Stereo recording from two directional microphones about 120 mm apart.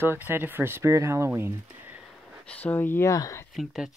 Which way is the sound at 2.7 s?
25° left (ahead or behind).